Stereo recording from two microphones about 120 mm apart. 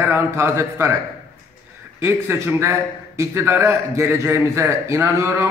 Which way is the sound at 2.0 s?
20° right (ahead or behind).